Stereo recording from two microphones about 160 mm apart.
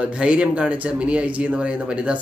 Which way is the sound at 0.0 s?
5° right (ahead or behind).